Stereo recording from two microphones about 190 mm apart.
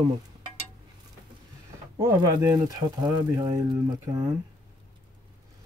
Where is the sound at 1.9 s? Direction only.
20° right (ahead or behind).